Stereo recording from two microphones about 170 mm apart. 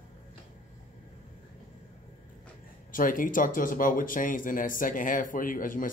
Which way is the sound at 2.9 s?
55° left (ahead or behind).